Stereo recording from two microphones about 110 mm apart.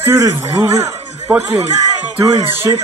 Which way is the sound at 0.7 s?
75° right (ahead or behind).